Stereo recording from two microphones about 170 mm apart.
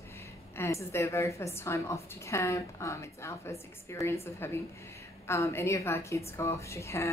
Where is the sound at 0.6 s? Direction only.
15° left (ahead or behind).